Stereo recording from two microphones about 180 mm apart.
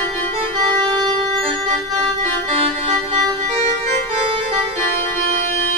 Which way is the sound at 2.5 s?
30° right (ahead or behind).